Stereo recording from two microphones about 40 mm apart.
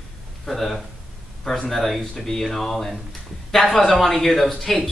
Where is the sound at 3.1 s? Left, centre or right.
Centre.